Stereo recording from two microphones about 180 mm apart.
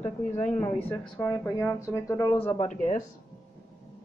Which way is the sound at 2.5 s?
40° left (ahead or behind).